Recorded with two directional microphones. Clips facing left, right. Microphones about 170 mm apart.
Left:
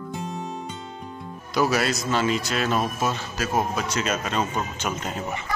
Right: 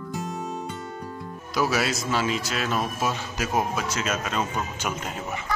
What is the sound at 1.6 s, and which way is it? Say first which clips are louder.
A man's voice: left 2 dB; 5° right (ahead or behind).